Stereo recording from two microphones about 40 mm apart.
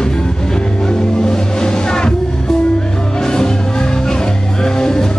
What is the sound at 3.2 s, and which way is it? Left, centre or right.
Music, centre.